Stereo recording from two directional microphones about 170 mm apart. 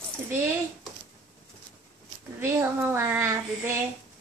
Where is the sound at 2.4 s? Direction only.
15° right (ahead or behind).